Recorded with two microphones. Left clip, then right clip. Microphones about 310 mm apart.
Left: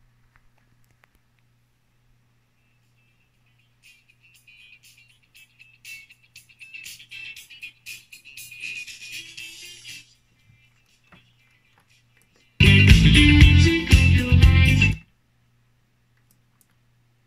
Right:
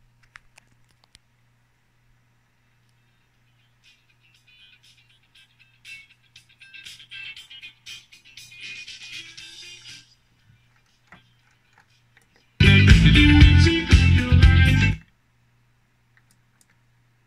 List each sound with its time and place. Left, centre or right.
0.3 s a sound: right
4.8 s music: left
7.2 s music: left
8.8 s music: left
12.5 s music: left